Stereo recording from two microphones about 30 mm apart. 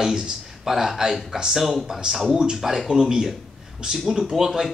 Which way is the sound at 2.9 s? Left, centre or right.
Centre.